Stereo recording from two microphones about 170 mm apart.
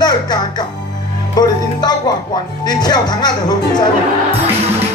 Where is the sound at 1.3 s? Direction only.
25° left (ahead or behind).